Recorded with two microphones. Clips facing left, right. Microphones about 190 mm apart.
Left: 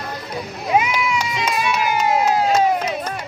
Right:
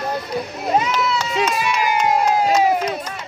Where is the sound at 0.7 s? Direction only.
10° left (ahead or behind).